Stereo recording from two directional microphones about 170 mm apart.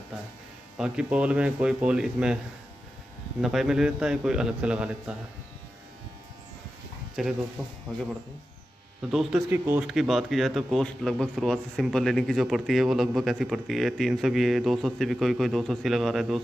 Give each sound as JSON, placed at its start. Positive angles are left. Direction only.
{"t": 0.7, "sound": "a man's voice", "side_deg": -5}
{"t": 3.3, "sound": "a man's voice", "side_deg": 0}
{"t": 7.2, "sound": "a man's voice", "side_deg": 0}
{"t": 9.1, "sound": "a man's voice", "side_deg": 0}
{"t": 9.5, "sound": "speech", "side_deg": -10}
{"t": 9.8, "sound": "a man's voice", "side_deg": 0}